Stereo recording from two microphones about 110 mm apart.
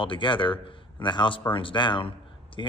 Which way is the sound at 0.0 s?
50° left (ahead or behind).